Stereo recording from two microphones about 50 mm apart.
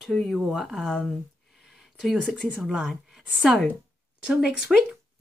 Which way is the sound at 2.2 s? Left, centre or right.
Centre.